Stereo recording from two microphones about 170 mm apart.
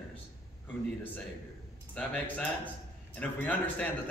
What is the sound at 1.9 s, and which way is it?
A man's voice, 5° left (ahead or behind).